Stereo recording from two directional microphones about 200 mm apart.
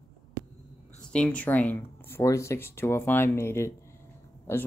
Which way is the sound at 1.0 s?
5° left (ahead or behind).